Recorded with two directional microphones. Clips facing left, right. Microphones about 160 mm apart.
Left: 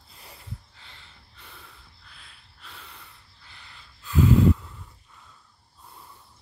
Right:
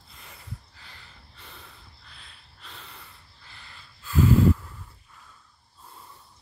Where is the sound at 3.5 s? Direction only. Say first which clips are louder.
Right 1 dB; 15° left (ahead or behind).